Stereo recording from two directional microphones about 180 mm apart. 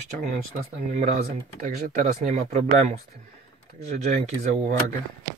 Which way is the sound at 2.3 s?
40° right (ahead or behind).